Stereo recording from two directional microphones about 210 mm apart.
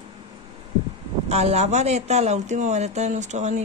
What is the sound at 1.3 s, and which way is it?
Speech, 30° right (ahead or behind).